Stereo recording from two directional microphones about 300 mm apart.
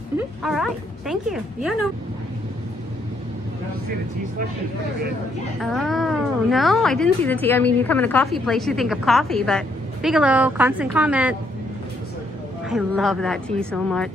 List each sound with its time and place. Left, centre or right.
0.4 s a woman's voice: centre
5.6 s a woman's voice: centre
12.6 s a woman's voice: centre